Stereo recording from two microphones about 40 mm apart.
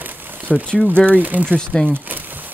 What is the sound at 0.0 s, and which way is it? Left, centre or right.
Crumpling, right.